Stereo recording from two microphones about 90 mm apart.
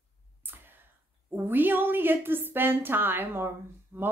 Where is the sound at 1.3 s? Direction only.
20° right (ahead or behind).